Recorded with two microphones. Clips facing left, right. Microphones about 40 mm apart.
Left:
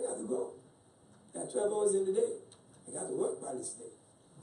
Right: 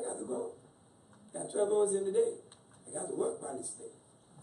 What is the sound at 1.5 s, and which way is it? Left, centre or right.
Speech, centre.